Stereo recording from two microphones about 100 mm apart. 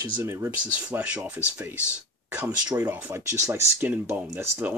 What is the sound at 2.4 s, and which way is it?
Speech, 25° right (ahead or behind).